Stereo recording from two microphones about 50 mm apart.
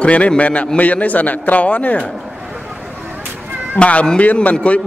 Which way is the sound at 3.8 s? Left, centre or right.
Left.